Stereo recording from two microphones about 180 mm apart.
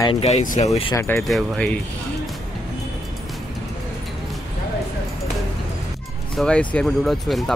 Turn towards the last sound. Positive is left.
turn(degrees=0)  # may be behind; listen again after turning